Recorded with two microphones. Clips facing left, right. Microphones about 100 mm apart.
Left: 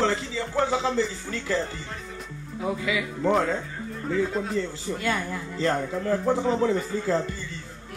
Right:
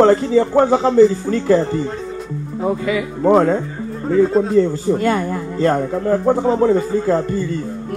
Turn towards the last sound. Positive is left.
turn(degrees=-45)  # may be behind; listen again after turning